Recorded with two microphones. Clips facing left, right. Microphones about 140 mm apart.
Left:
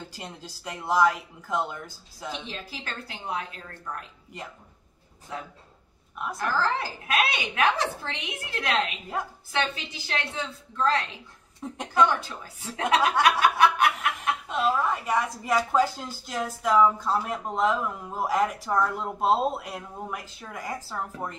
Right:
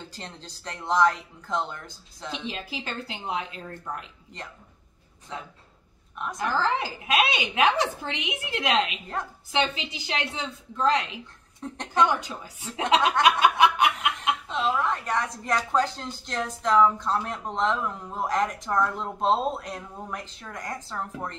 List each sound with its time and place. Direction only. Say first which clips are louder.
0.1 s a woman's voice: left 1 dB; 10° left (ahead or behind)
2.4 s a woman's voice: right 4 dB; 20° right (ahead or behind)
6.3 s a woman's voice: right 1 dB; 20° right (ahead or behind)
11.6 s a woman's voice: even; 5° left (ahead or behind)
12.0 s a woman's voice: even; 15° right (ahead or behind)
13.2 s snicker: right 1 dB; 20° right (ahead or behind)
14.5 s a woman's voice: left 2 dB; 10° left (ahead or behind)